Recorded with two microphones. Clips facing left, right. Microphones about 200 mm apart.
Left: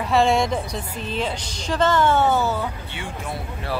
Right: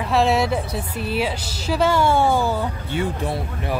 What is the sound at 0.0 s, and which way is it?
A woman's voice, centre (ahead or behind).